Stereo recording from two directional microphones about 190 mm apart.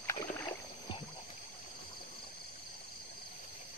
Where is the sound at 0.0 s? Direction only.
15° left (ahead or behind).